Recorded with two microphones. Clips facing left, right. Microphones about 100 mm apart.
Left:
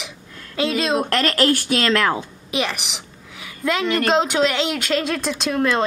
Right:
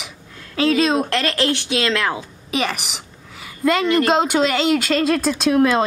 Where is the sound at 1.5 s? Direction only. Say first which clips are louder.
Left 1 dB; 45° left (ahead or behind).